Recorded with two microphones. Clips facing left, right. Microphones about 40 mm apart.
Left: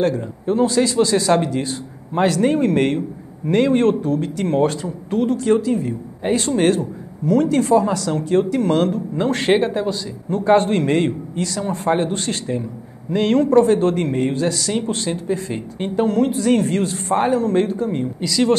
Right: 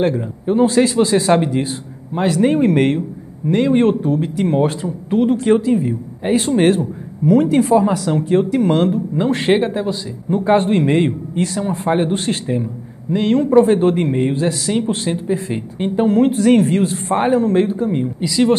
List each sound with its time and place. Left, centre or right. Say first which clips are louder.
0.0 s speech: right 2 dB; centre
11.3 s speech: right 4 dB; right
11.6 s speech: even; centre
13.1 s speech: right 2 dB; centre
16.3 s speech: right 4 dB; right
16.5 s speech: right 4 dB; centre